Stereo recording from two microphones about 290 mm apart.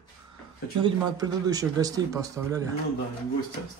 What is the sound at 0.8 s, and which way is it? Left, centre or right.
Speech, centre.